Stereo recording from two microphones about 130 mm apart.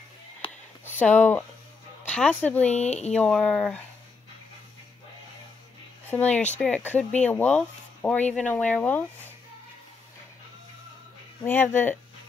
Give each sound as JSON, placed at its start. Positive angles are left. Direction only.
{"t": 0.4, "sound": "a sound", "side_deg": 45}
{"t": 0.8, "sound": "speech", "side_deg": 15}
{"t": 2.7, "sound": "speech", "side_deg": 60}
{"t": 3.1, "sound": "speech", "side_deg": 5}
{"t": 6.0, "sound": "speech", "side_deg": 10}
{"t": 11.4, "sound": "speech", "side_deg": 15}